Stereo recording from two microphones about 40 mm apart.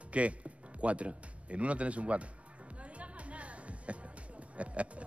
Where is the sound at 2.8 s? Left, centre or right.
Right.